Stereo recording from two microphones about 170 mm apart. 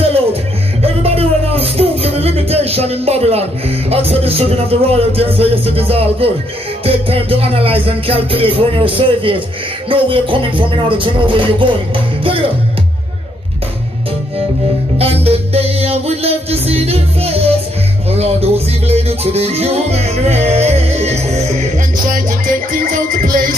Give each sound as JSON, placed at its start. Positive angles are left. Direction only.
{"t": 0.0, "sound": "music", "side_deg": -35}
{"t": 15.0, "sound": "music", "side_deg": -35}